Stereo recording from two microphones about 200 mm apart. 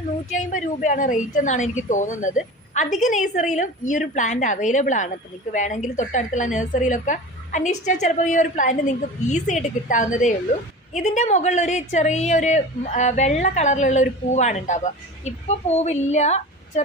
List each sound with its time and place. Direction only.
0.3 s a woman's voice: 40° left (ahead or behind)